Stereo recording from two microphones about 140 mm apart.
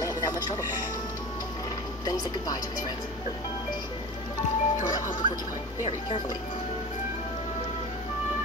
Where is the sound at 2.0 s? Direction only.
25° left (ahead or behind).